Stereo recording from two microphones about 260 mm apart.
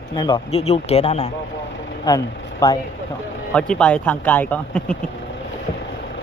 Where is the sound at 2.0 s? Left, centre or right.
Centre.